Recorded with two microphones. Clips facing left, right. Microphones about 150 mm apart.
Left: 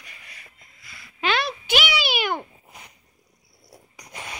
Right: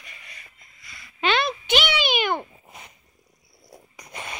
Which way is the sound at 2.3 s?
10° right (ahead or behind).